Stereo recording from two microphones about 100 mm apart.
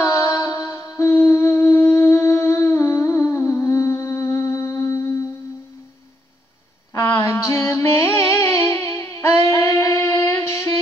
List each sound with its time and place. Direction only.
0.0 s music: 30° left (ahead or behind)
6.9 s music: 25° left (ahead or behind)